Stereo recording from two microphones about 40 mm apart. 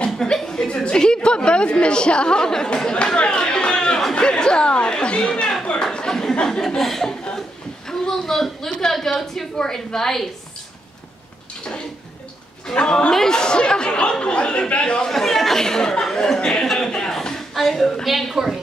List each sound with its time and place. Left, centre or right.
0.0 s a sound: centre
4.1 s speech: left
5.9 s a sound: centre
6.4 s a man's voice: centre
6.8 s speech: centre
7.3 s a sound: centre
8.9 s a woman's voice: centre
12.7 s a man's voice: left
15.0 s speech: centre
15.6 s a woman's voice: centre
16.6 s chuckle: centre
18.0 s speech: centre